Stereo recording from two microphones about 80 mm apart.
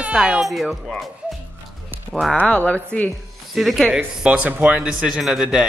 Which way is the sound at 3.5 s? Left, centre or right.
Centre.